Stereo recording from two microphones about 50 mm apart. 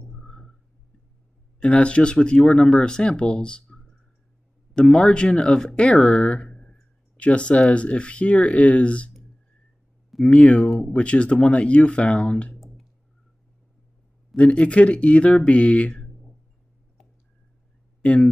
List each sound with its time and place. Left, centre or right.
0.1 s a sound: centre
1.6 s speech: left
10.2 s speech: centre
12.5 s clicking: centre
14.3 s speech: left
18.0 s speech: left